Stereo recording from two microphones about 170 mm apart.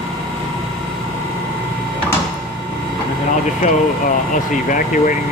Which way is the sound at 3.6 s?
50° left (ahead or behind).